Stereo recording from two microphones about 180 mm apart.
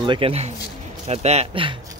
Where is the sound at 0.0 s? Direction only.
30° right (ahead or behind).